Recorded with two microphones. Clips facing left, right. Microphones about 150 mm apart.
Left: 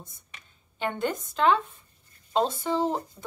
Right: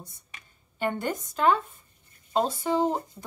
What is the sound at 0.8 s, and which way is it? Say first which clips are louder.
Speech: even; 10° right (ahead or behind).